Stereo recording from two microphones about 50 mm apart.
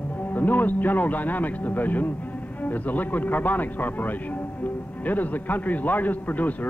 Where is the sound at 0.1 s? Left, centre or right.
Left.